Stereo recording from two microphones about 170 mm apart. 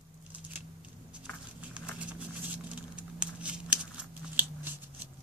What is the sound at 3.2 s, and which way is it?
Crumpling, 5° right (ahead or behind).